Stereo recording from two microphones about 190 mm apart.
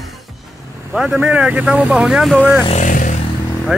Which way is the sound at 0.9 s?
5° right (ahead or behind).